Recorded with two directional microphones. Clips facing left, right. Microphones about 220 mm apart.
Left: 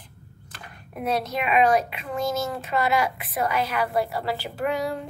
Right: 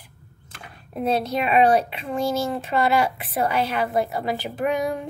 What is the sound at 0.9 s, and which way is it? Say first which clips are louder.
A woman's voice: right 3 dB; 30° right (ahead or behind).